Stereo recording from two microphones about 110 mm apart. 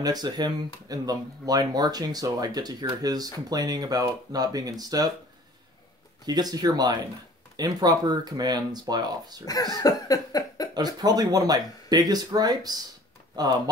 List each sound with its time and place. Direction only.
0.0 s speech: 35° right (ahead or behind)
6.2 s speech: 35° right (ahead or behind)
9.5 s cough: 35° left (ahead or behind)
11.0 s speech: 35° right (ahead or behind)